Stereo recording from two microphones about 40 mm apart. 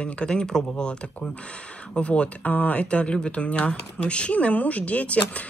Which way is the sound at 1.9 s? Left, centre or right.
Left.